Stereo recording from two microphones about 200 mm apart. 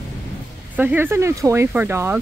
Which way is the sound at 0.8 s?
10° right (ahead or behind).